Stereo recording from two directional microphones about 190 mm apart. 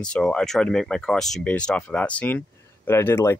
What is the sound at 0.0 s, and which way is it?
Speech, 5° left (ahead or behind).